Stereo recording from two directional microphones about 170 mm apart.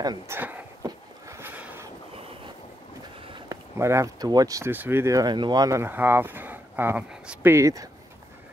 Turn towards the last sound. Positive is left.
turn(degrees=-20)  # may be behind; listen again after turning